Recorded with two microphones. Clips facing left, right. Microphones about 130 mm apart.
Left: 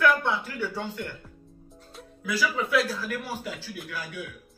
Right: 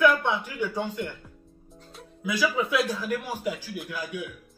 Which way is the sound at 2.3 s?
20° right (ahead or behind).